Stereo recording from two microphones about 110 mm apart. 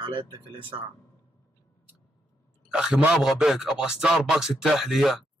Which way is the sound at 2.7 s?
5° right (ahead or behind).